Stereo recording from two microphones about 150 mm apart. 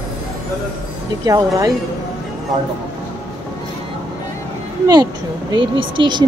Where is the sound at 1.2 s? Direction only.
25° right (ahead or behind).